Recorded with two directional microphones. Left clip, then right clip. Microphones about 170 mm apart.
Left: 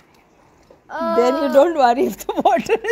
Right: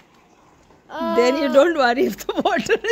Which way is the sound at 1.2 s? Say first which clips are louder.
Left 1 dB; centre (ahead or behind).